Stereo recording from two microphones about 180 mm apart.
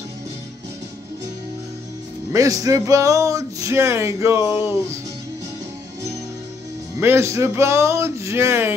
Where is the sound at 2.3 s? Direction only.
20° right (ahead or behind).